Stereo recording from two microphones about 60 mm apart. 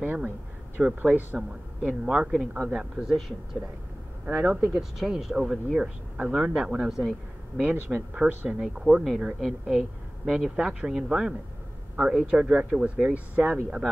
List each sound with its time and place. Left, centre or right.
0.0 s speech: right
0.8 s speech: centre
1.1 s speech: right
2.0 s speech: centre
4.3 s speech: centre
4.9 s speech: centre
7.5 s speech: right
8.5 s speech: centre